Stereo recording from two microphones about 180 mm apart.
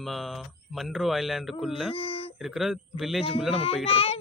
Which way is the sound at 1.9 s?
30° left (ahead or behind).